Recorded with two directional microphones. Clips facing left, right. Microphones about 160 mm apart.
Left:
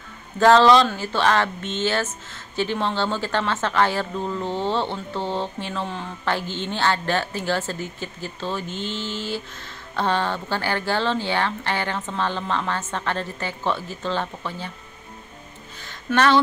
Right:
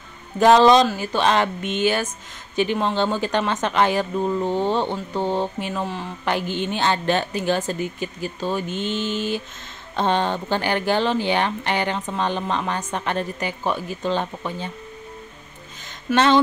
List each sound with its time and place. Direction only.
0.4 s speech: 15° right (ahead or behind)
5.9 s speech: 5° right (ahead or behind)
6.2 s speech: 15° right (ahead or behind)
16.1 s speech: 10° right (ahead or behind)